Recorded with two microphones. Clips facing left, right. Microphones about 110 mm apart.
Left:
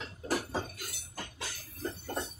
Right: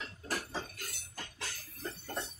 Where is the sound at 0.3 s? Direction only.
15° left (ahead or behind).